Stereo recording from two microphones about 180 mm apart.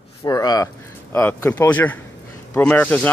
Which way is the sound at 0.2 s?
20° left (ahead or behind).